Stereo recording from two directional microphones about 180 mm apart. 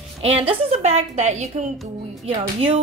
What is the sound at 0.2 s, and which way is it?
Speech, 35° right (ahead or behind).